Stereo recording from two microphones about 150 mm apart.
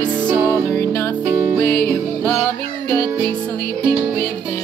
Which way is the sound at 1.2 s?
20° right (ahead or behind).